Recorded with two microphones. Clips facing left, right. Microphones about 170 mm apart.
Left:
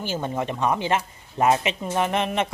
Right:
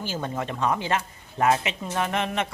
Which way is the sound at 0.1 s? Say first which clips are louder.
Left 4 dB; 20° left (ahead or behind).